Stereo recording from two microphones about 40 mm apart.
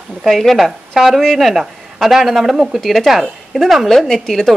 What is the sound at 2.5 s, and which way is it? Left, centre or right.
Speech, centre.